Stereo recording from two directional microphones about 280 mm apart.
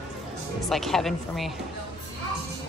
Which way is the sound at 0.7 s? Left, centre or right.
Centre.